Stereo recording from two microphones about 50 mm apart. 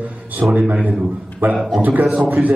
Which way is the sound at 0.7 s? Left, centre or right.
Right.